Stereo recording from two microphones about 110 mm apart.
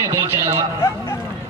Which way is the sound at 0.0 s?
30° right (ahead or behind).